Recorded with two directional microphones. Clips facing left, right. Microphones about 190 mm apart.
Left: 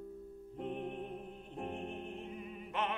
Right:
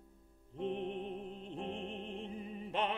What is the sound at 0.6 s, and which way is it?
Music, 25° right (ahead or behind).